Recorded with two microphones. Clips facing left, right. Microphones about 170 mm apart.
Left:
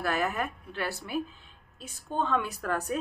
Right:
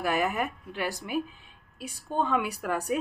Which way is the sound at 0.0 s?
15° right (ahead or behind).